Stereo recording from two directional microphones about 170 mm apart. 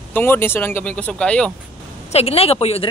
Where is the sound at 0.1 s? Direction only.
10° left (ahead or behind).